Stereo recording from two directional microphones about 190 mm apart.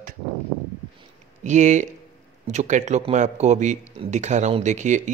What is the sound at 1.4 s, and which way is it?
Speech, 40° right (ahead or behind).